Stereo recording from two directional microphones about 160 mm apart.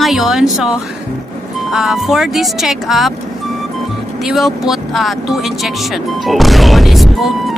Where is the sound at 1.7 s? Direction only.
Centre (ahead or behind).